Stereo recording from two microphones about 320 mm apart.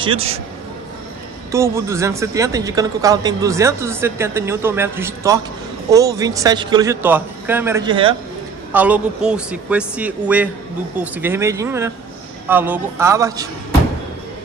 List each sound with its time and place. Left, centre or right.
0.0 s speech: centre
1.5 s speech: centre
8.7 s a man's voice: centre